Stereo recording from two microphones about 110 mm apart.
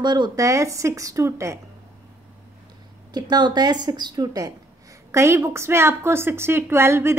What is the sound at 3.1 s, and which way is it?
A woman's voice, 40° right (ahead or behind).